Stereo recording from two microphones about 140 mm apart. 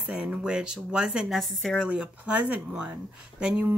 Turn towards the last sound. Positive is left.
turn(degrees=-10)  # may be behind; listen again after turning